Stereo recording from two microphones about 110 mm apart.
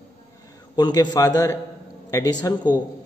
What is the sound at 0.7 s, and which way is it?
A man's voice, 40° left (ahead or behind).